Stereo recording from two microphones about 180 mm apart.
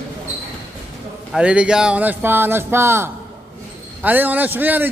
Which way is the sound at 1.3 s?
5° right (ahead or behind).